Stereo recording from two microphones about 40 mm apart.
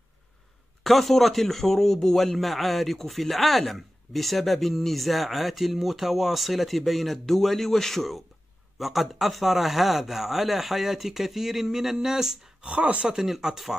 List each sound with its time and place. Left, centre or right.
0.8 s speech: centre
12.6 s speech: right
13.0 s speech: centre